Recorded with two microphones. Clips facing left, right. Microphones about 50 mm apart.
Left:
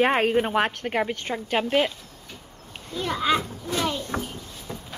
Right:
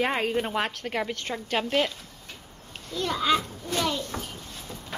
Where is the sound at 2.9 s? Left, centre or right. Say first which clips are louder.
Left 1 dB; centre.